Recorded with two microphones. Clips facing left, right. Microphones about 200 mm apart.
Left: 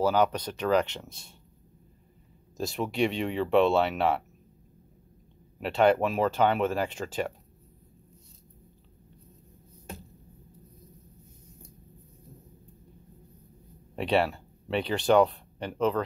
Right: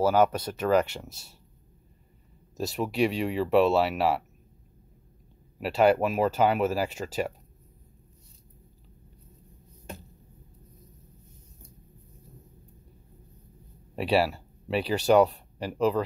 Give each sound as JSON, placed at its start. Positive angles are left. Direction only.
{"t": 0.0, "sound": "speech", "side_deg": -5}
{"t": 2.5, "sound": "speech", "side_deg": -5}
{"t": 5.6, "sound": "speech", "side_deg": -5}
{"t": 13.9, "sound": "speech", "side_deg": -5}